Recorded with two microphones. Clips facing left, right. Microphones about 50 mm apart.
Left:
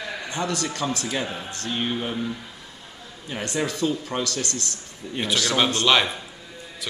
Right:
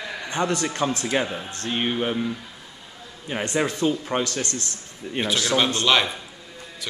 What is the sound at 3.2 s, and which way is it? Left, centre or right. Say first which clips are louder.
A man's voice: right 3 dB; right.